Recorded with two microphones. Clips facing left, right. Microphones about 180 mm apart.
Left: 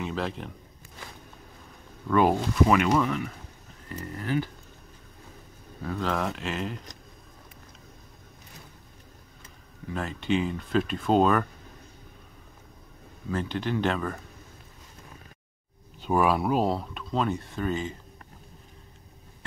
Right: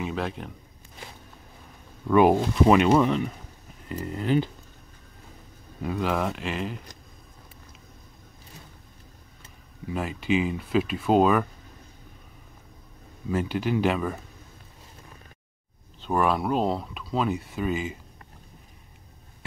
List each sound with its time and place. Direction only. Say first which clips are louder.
0.0 s speech: right 1 dB; centre (ahead or behind)
2.0 s speech: right 4 dB; 15° right (ahead or behind)
5.8 s speech: right 3 dB; 15° right (ahead or behind)
6.1 s speech: right 2 dB; centre (ahead or behind)
9.8 s speech: right 2 dB; 5° right (ahead or behind)
13.3 s speech: right 3 dB; 10° right (ahead or behind)
16.0 s speech: left 1 dB; 5° left (ahead or behind)